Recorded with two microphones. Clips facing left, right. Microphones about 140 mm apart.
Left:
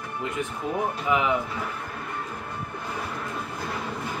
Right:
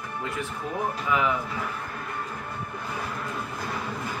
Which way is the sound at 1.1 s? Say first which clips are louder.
Left 1 dB; 20° left (ahead or behind).